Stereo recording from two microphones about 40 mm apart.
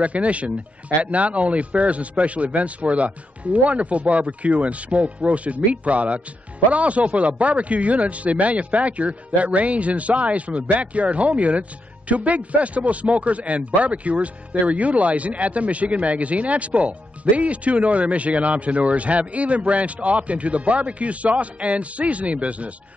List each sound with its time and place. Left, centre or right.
0.0 s speech: right